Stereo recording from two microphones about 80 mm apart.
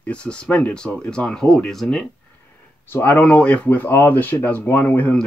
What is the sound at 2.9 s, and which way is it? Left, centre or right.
Speech, left.